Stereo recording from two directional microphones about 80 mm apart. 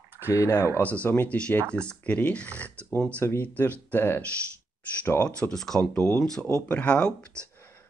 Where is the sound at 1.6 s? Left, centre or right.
Right.